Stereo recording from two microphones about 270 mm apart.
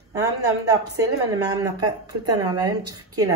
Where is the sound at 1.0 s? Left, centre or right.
Centre.